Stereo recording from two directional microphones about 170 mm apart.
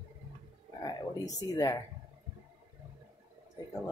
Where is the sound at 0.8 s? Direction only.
20° left (ahead or behind).